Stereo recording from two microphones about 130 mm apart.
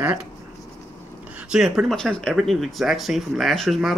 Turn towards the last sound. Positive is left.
turn(degrees=0)  # may be behind; listen again after turning